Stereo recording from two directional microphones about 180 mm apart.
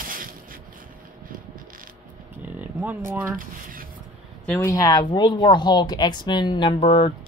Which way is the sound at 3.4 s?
50° right (ahead or behind).